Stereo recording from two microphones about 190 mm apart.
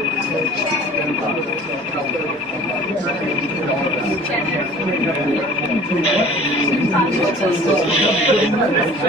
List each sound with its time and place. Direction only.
7.9 s speech: 30° left (ahead or behind)